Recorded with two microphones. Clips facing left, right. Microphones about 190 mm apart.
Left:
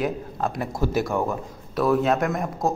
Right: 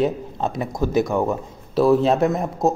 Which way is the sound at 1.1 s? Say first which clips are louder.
Right 4 dB; 25° right (ahead or behind).